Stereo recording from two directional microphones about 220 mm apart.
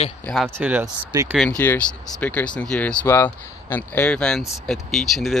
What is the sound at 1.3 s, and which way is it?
Speech, 5° left (ahead or behind).